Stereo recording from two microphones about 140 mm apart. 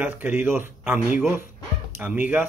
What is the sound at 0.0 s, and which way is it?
Speech, 10° right (ahead or behind).